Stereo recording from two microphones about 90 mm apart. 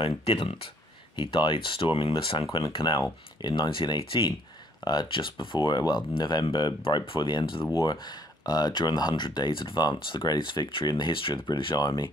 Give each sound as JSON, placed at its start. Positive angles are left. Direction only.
{"t": 0.0, "sound": "speech", "side_deg": 85}
{"t": 1.1, "sound": "speech", "side_deg": 65}
{"t": 2.7, "sound": "speech", "side_deg": 55}
{"t": 11.7, "sound": "speech", "side_deg": 45}